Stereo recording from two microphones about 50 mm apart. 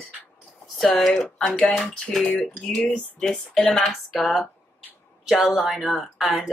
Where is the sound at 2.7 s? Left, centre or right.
Left.